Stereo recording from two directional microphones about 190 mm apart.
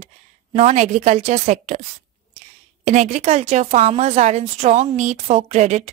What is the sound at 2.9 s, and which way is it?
A woman's voice, 40° right (ahead or behind).